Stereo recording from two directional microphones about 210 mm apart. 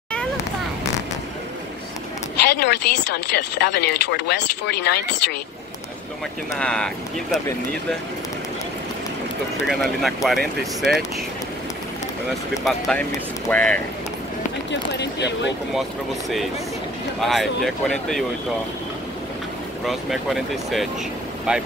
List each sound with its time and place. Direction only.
2.3 s speech: 55° left (ahead or behind)
6.6 s speech: 5° left (ahead or behind)
9.7 s speech: centre (ahead or behind)
12.6 s speech: centre (ahead or behind)
14.7 s speech: 55° left (ahead or behind)
17.2 s speech: centre (ahead or behind)
19.9 s speech: centre (ahead or behind)